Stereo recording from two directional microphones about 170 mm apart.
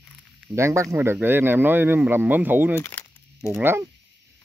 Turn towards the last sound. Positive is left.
turn(degrees=-15)  # may be behind; listen again after turning